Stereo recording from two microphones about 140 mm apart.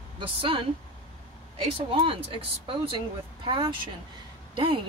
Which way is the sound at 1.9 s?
40° right (ahead or behind).